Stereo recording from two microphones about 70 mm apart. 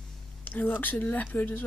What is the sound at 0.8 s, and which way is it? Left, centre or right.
Speech, left.